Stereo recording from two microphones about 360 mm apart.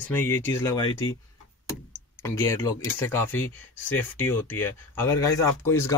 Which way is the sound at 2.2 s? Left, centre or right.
Centre.